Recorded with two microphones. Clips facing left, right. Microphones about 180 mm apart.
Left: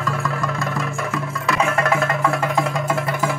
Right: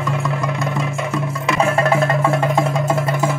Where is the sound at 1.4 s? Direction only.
30° right (ahead or behind).